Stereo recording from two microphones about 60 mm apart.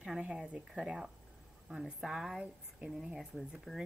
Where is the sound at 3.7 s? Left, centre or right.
Centre.